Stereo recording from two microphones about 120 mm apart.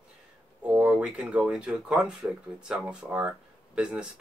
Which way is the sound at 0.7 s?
15° right (ahead or behind).